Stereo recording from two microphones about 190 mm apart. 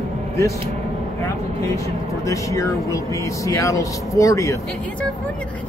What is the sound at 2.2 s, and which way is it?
Speech, 15° left (ahead or behind).